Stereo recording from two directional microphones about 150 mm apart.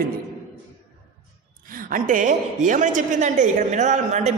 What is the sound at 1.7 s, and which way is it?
A woman's voice, 65° right (ahead or behind).